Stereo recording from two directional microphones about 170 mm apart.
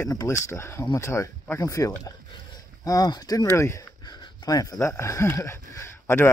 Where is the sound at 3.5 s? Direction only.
15° left (ahead or behind).